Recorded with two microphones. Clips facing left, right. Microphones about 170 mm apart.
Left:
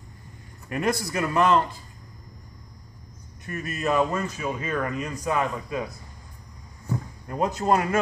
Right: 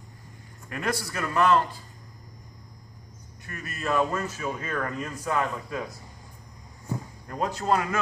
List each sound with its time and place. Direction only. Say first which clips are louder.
0.7 s a man's voice: left 4 dB; 15° left (ahead or behind)
3.6 s a man's voice: left 2 dB; 15° left (ahead or behind)
7.2 s a man's voice: left 3 dB; 15° left (ahead or behind)